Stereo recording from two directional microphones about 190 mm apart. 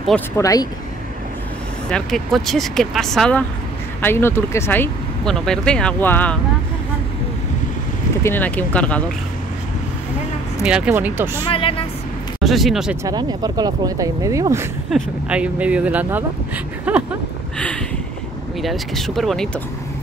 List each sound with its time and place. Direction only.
0.4 s speech: 20° left (ahead or behind)
1.9 s speech: 5° left (ahead or behind)
8.2 s speech: 10° left (ahead or behind)
10.6 s speech: 5° right (ahead or behind)
11.4 s speech: 30° left (ahead or behind)
12.4 s speech: centre (ahead or behind)
13.0 s speech: 20° right (ahead or behind)
18.6 s speech: centre (ahead or behind)